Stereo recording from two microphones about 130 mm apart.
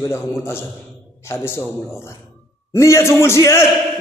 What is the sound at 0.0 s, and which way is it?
Speech, 20° left (ahead or behind).